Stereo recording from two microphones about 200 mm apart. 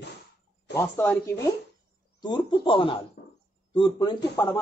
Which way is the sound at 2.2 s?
25° left (ahead or behind).